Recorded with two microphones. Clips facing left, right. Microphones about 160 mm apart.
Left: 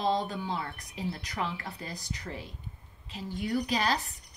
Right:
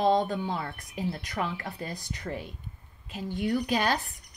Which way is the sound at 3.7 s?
50° right (ahead or behind).